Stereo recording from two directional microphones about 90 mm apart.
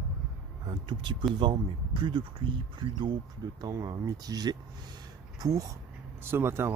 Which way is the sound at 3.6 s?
45° right (ahead or behind).